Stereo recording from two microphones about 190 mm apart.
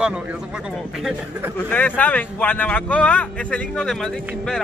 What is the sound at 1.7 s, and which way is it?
Speech, 10° left (ahead or behind).